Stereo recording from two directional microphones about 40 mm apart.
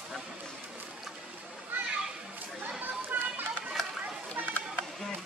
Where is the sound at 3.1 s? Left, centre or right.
Right.